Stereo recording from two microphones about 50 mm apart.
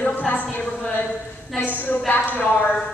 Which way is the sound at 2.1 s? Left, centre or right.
Left.